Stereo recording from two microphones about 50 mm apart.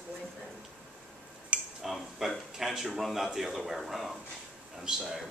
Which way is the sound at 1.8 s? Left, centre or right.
Centre.